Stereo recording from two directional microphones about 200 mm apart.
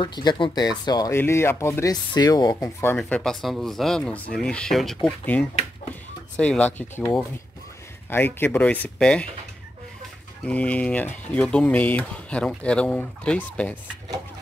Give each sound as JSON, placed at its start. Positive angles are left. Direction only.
{"t": 0.0, "sound": "speech", "side_deg": 20}
{"t": 10.4, "sound": "speech", "side_deg": 5}